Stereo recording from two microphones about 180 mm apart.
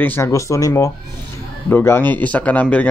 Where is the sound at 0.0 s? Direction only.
15° left (ahead or behind).